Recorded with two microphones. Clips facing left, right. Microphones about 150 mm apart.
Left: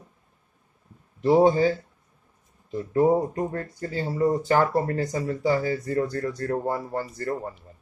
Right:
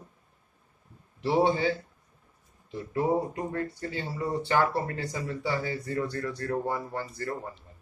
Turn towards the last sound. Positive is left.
turn(degrees=40)  # may be behind; listen again after turning